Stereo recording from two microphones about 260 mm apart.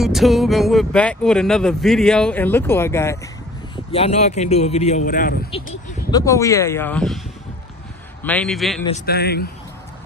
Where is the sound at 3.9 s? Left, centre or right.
Left.